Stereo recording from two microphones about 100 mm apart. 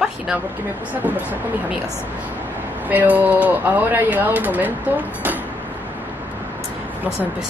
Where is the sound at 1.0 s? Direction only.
15° right (ahead or behind).